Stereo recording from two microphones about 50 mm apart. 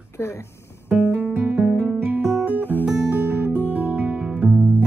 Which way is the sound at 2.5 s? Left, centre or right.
Left.